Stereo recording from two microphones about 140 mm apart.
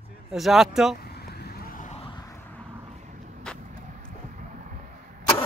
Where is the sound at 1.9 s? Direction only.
40° left (ahead or behind).